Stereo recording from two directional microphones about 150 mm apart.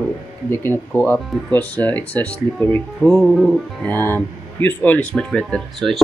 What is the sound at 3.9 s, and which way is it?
Speech, 15° left (ahead or behind).